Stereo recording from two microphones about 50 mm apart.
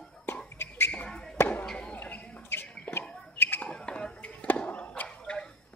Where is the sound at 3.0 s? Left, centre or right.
Centre.